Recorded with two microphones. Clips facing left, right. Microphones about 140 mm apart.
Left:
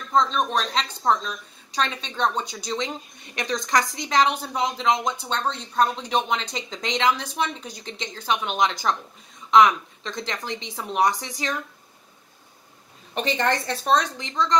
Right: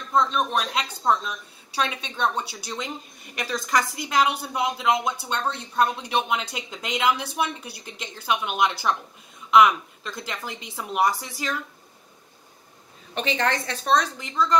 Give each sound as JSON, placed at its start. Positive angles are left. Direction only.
{"t": 0.1, "sound": "a woman's voice", "side_deg": -5}
{"t": 13.1, "sound": "a woman's voice", "side_deg": 0}